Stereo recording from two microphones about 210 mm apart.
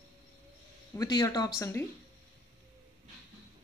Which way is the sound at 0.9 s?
15° left (ahead or behind).